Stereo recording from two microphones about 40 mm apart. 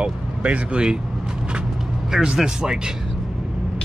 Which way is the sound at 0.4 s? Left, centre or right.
Right.